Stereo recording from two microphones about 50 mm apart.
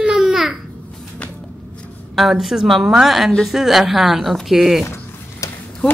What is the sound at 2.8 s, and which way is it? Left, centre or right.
A woman's voice, centre.